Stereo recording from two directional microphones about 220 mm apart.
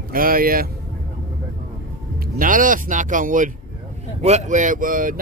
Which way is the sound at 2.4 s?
40° right (ahead or behind).